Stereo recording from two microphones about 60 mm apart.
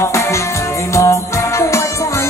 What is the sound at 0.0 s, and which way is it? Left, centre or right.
Music, left.